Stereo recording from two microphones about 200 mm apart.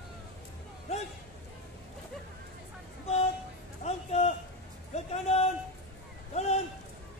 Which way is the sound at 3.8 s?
35° left (ahead or behind).